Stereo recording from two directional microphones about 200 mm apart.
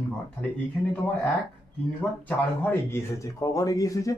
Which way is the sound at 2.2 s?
10° left (ahead or behind).